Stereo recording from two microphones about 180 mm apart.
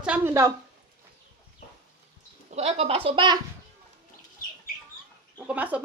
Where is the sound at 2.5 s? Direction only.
35° right (ahead or behind).